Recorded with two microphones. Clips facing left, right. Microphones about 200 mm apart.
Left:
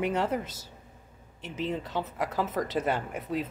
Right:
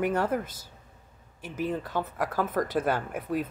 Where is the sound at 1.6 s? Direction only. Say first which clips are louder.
Right 2 dB; centre (ahead or behind).